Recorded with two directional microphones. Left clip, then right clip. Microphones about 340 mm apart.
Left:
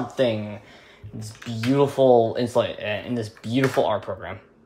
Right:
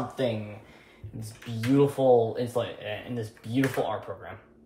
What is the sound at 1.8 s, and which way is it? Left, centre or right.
Speech, left.